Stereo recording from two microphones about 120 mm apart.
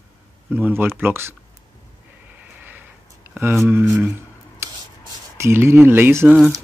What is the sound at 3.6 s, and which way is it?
Speech, 20° right (ahead or behind).